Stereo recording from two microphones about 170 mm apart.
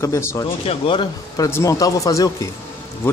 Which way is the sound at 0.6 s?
30° left (ahead or behind).